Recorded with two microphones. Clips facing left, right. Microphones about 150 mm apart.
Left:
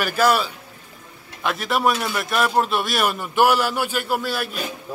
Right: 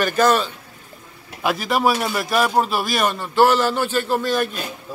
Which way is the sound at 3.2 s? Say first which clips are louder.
Right 3 dB; 15° left (ahead or behind).